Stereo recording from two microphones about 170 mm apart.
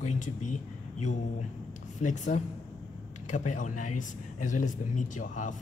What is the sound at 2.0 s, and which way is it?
A woman's voice, 45° left (ahead or behind).